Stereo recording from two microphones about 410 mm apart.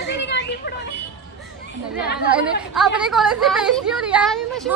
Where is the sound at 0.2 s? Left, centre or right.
Left.